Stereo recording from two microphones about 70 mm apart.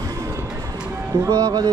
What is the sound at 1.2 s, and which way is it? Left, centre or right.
Speech, right.